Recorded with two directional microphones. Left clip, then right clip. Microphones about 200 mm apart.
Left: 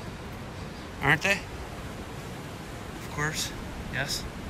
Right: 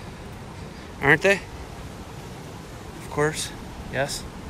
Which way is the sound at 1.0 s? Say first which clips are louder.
Right 6 dB; 15° left (ahead or behind).